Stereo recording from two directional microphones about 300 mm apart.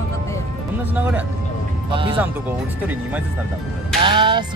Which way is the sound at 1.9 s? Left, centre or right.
Centre.